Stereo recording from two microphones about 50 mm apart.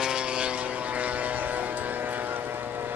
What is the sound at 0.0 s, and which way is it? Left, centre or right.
Vehicle, centre.